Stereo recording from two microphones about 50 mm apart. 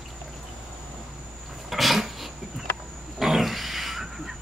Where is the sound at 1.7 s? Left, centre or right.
Centre.